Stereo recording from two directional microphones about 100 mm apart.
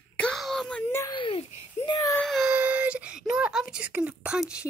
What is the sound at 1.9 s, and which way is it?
Speech, 40° left (ahead or behind).